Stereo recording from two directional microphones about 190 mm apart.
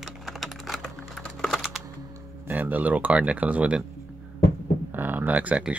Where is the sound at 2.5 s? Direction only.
10° right (ahead or behind).